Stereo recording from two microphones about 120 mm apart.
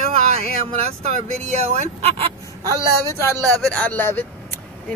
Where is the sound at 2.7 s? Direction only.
25° left (ahead or behind).